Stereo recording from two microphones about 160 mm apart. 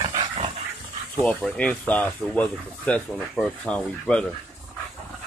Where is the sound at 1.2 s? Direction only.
10° left (ahead or behind).